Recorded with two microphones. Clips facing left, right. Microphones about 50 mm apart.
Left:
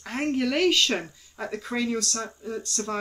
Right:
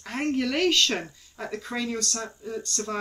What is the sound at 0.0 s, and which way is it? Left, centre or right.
Speech, centre.